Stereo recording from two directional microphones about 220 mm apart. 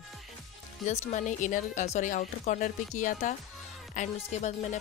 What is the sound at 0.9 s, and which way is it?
Speech, 30° left (ahead or behind).